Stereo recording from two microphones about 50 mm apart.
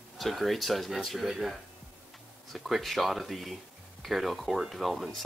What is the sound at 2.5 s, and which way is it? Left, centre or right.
Speech, centre.